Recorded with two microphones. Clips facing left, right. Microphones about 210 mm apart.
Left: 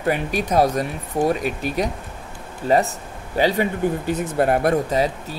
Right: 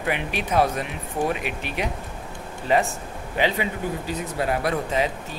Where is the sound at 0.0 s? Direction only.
40° left (ahead or behind).